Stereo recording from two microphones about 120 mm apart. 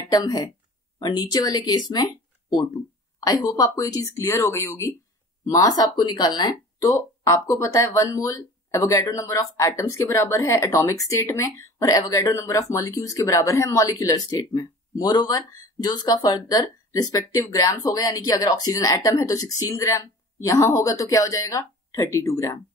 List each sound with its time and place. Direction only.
0.1 s speech: 30° left (ahead or behind)